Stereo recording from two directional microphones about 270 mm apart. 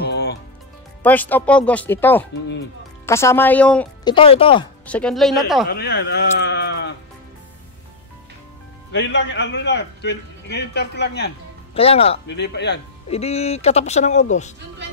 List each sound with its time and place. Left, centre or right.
0.0 s music: left
1.0 s speech: centre
4.0 s speech: centre
4.8 s speech: centre
5.7 s speech: left
8.9 s a man's voice: left
11.7 s speech: left
12.3 s a man's voice: left
13.1 s speech: left